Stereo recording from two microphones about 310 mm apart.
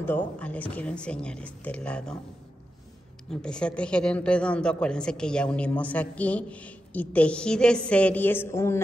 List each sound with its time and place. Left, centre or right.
0.0 s a woman's voice: centre
3.3 s a woman's voice: centre